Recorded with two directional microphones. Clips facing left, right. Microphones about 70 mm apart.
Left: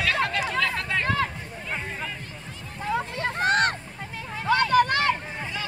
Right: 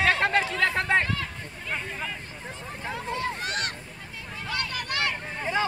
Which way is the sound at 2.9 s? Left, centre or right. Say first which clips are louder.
Left 3 dB; left.